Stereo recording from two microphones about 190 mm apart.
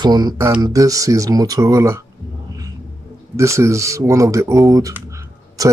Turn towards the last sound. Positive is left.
turn(degrees=-20)  # may be behind; listen again after turning